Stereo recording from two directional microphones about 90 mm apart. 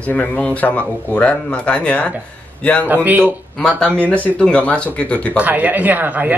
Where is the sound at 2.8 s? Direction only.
20° right (ahead or behind).